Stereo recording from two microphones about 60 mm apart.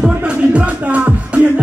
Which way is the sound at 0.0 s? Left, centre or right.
Centre.